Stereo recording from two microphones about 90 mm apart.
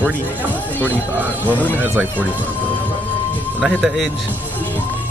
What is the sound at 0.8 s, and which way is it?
Speech, 20° right (ahead or behind).